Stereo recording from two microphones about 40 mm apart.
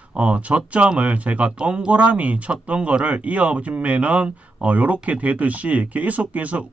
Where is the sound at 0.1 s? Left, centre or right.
Right.